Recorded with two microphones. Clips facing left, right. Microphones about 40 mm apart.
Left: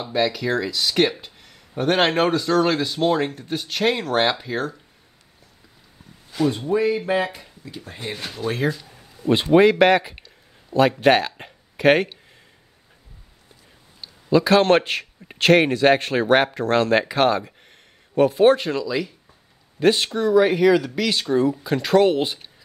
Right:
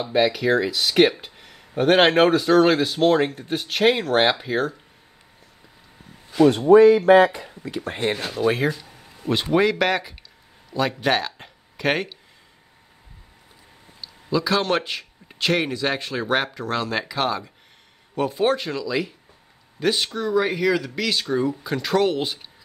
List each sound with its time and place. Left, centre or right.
0.0 s speech: centre
6.7 s speech: right
7.7 s speech: right
8.3 s speech: centre
9.3 s speech: centre
10.7 s speech: right
11.1 s speech: centre
14.0 s a man's voice: left
18.4 s speech: centre